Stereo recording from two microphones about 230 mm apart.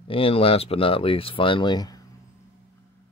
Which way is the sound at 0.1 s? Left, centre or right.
Left.